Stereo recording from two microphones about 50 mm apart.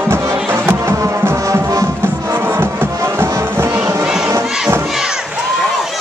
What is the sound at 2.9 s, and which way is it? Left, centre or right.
Music, right.